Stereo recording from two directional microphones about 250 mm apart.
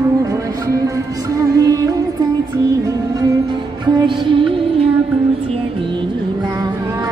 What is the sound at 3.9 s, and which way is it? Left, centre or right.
Music, centre.